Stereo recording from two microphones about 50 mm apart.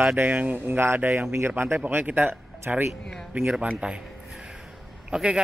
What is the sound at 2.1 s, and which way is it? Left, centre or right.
Speech, right.